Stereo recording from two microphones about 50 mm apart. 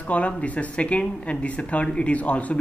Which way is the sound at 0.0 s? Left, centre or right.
Left.